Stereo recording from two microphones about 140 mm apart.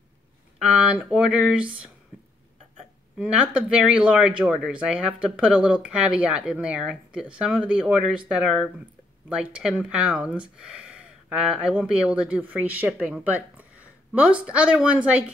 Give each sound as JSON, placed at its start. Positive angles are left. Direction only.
{"t": 0.6, "sound": "speech", "side_deg": -10}